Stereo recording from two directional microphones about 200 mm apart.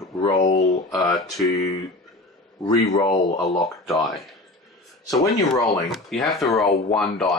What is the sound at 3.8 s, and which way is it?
Speech, centre (ahead or behind).